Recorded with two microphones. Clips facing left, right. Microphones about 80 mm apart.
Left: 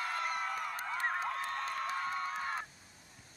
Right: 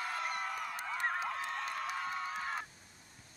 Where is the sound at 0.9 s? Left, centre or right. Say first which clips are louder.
Even; centre.